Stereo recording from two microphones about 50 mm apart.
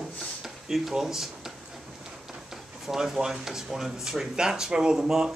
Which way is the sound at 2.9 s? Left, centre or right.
Centre.